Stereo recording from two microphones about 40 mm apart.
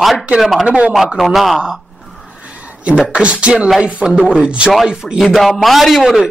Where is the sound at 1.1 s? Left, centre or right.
Centre.